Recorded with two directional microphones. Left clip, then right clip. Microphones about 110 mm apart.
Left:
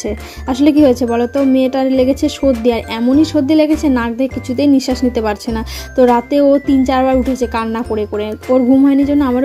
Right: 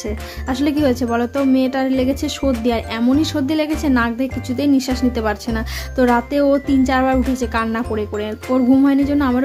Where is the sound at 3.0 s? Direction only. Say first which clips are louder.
Left 6 dB; 15° left (ahead or behind).